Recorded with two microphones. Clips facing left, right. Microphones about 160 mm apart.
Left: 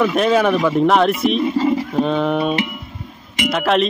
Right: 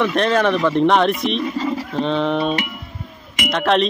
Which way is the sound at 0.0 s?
5° left (ahead or behind).